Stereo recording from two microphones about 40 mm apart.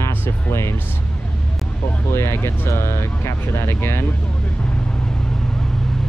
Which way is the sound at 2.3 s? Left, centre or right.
Left.